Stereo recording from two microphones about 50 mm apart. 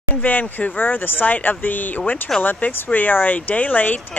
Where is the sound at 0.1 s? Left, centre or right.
Left.